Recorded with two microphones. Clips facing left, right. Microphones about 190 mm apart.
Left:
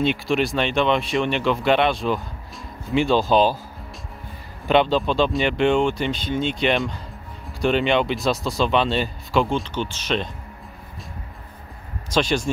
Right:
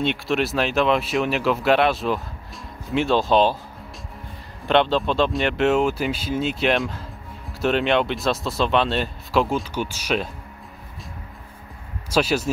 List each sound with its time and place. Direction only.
0.0 s speech: centre (ahead or behind)
4.6 s speech: centre (ahead or behind)
12.1 s speech: 5° right (ahead or behind)